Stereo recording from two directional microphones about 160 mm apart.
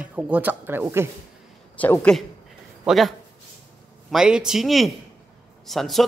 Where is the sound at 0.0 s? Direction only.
10° right (ahead or behind).